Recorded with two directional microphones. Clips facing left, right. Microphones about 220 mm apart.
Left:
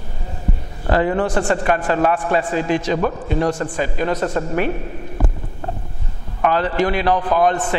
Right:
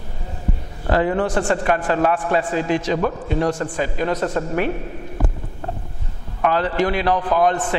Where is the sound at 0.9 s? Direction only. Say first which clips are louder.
Left 1 dB; 20° left (ahead or behind).